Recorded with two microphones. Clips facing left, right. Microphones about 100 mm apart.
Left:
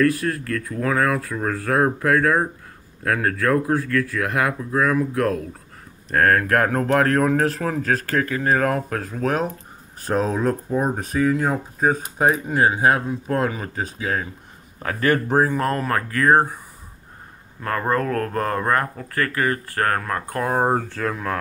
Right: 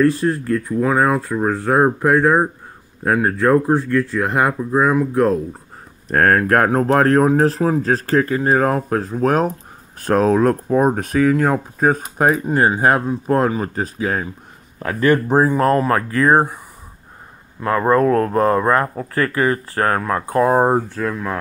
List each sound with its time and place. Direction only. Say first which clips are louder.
0.0 s speech: right 4 dB; 25° right (ahead or behind)
6.0 s speech: right 3 dB; 40° right (ahead or behind)
9.9 s speech: right 7 dB; 70° right (ahead or behind)
12.4 s speech: right 3 dB; 45° right (ahead or behind)
14.8 s speech: right 4 dB; 30° right (ahead or behind)
17.6 s speech: right 7 dB; 15° right (ahead or behind)
20.9 s speech: right 3 dB; 5° right (ahead or behind)